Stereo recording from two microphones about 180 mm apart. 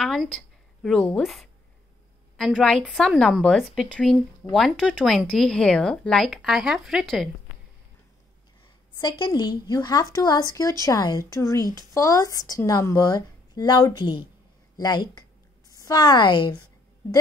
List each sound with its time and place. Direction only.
0.0 s a sound: centre (ahead or behind)
1.1 s speech: centre (ahead or behind)
9.0 s a woman's voice: 25° left (ahead or behind)